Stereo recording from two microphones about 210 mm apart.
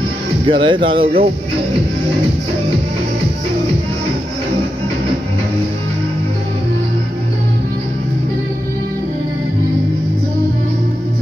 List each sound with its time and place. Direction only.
0.5 s speech: 25° right (ahead or behind)